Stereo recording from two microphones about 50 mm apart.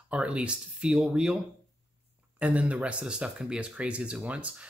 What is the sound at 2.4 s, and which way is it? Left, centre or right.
Speech, right.